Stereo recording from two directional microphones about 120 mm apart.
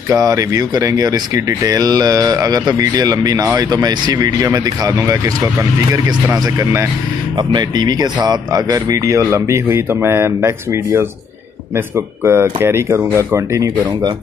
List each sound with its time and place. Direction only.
0.1 s speech: 30° right (ahead or behind)
7.3 s speech: 35° right (ahead or behind); by 13.7 s 20° right (ahead or behind)